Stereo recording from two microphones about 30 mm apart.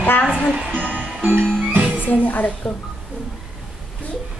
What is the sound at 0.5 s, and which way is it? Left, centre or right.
Music, right.